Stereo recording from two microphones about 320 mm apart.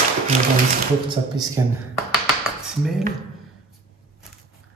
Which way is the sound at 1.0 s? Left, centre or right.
Centre.